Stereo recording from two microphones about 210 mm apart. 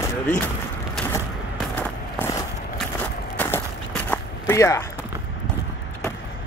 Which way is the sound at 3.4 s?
5° left (ahead or behind).